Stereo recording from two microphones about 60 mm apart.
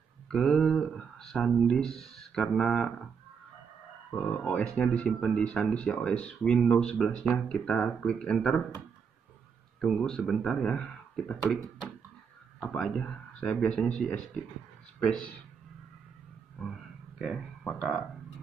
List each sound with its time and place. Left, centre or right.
0.3 s speech: centre
4.2 s speech: left
8.0 s speech: centre
9.8 s speech: centre
16.6 s speech: centre